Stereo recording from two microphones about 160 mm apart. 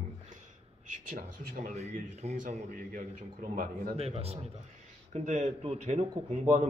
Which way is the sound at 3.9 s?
40° right (ahead or behind).